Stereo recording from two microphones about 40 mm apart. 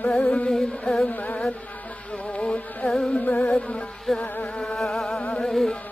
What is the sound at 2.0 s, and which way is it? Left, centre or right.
Music, left.